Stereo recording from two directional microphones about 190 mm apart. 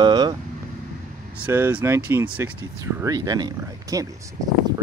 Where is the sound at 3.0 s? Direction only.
20° right (ahead or behind).